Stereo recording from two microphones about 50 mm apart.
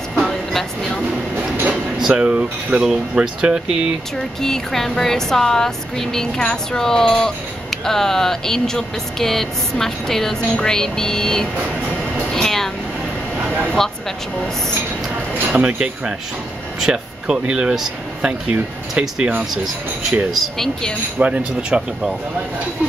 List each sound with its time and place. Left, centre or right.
0.2 s vehicle: centre
2.0 s a sound: centre
2.2 s speech: right
2.8 s speech: centre
4.4 s speech: centre
12.3 s a sound: centre
15.5 s speech: right
19.5 s speech: centre
21.2 s speech: right